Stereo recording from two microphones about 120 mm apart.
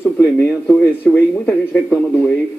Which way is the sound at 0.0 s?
15° left (ahead or behind).